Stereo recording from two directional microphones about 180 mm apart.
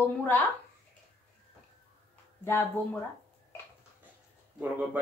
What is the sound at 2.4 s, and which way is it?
Speech, 10° left (ahead or behind).